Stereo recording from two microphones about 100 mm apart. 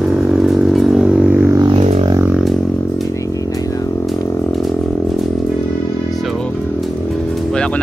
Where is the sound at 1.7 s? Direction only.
90° right.